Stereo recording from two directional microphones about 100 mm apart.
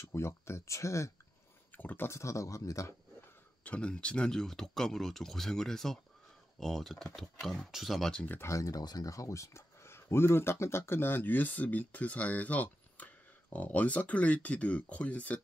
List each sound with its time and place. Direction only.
0.1 s speech: 25° left (ahead or behind)
3.6 s speech: 10° left (ahead or behind)
8.4 s speech: 30° left (ahead or behind); by 15.4 s 15° left (ahead or behind)